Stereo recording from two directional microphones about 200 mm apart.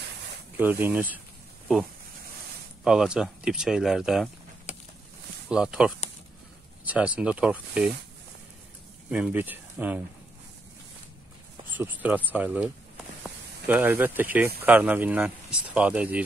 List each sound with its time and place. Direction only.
0.6 s speech: 10° right (ahead or behind)
2.8 s speech: 5° right (ahead or behind)
4.7 s a sound: 35° left (ahead or behind)
5.5 s speech: 5° right (ahead or behind)
9.1 s speech: 5° right (ahead or behind)
11.7 s speech: 10° right (ahead or behind)